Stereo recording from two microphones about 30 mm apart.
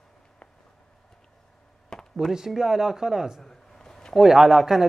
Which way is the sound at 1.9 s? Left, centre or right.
Left.